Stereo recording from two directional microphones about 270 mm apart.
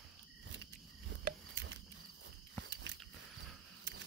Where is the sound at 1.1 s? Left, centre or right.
Right.